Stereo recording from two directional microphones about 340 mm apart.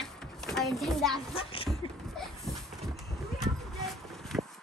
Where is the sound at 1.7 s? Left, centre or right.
Centre.